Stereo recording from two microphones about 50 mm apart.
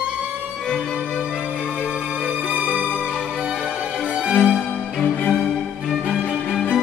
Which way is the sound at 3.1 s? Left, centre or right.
Centre.